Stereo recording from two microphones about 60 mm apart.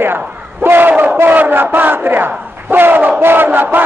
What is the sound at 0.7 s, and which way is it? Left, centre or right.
Battle cry, right.